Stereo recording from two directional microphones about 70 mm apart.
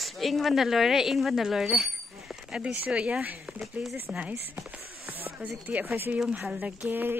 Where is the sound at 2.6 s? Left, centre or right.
Centre.